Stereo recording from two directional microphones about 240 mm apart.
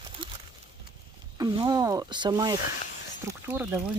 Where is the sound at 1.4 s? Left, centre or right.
Centre.